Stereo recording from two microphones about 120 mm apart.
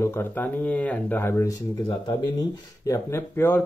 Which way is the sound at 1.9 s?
35° left (ahead or behind).